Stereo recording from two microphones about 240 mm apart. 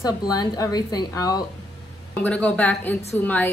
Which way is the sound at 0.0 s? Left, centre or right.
Centre.